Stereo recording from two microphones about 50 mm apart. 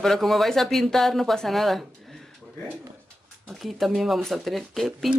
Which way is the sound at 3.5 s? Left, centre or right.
Centre.